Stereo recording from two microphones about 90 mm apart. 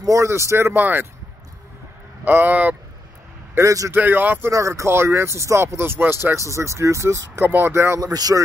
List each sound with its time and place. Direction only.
0.0 s speech: 35° right (ahead or behind)
2.2 s speech: 20° right (ahead or behind)
3.5 s speech: 35° right (ahead or behind)
3.9 s speech: 20° right (ahead or behind)
4.5 s speech: 35° right (ahead or behind)
8.0 s speech: 45° right (ahead or behind)